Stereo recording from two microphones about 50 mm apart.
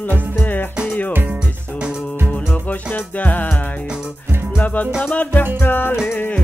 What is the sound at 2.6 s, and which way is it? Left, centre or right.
Music, left.